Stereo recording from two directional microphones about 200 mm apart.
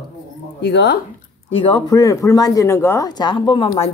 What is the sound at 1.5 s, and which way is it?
Speech, 25° left (ahead or behind).